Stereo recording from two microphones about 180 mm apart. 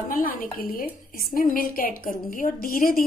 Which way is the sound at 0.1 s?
50° left (ahead or behind).